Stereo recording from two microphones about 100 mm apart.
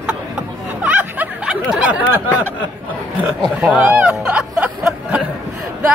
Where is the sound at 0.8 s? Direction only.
15° right (ahead or behind).